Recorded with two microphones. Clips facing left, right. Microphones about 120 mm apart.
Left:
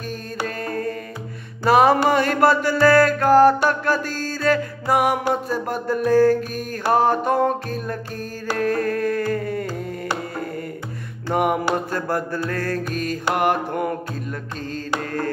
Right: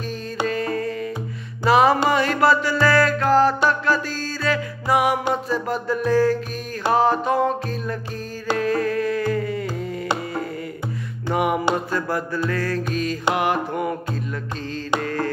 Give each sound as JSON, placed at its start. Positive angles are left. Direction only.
{"t": 0.5, "sound": "mantra", "side_deg": 50}
{"t": 1.6, "sound": "music", "side_deg": 50}
{"t": 9.3, "sound": "a sound", "side_deg": 50}
{"t": 11.3, "sound": "music", "side_deg": 50}
{"t": 15.0, "sound": "carnatic music", "side_deg": 45}